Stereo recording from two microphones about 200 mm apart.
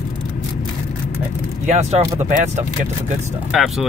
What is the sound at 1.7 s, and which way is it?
Speech, 35° right (ahead or behind).